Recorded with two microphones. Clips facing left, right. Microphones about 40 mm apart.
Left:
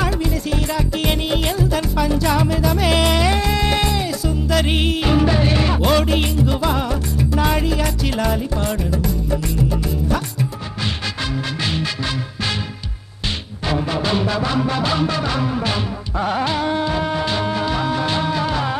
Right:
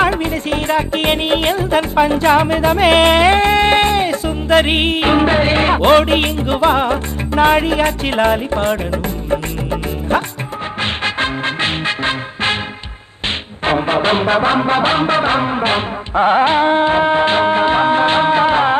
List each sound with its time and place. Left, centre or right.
0.0 s music: right
13.7 s music: right